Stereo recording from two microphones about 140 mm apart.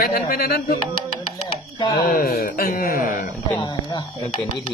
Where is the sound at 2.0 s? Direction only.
90° left.